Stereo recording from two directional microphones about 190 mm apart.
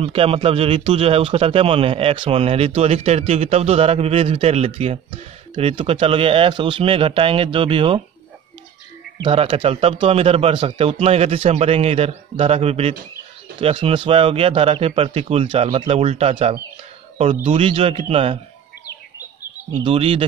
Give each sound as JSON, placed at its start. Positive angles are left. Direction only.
{"t": 0.0, "sound": "speech", "side_deg": -30}
{"t": 9.2, "sound": "speech", "side_deg": -25}
{"t": 19.8, "sound": "speech", "side_deg": -30}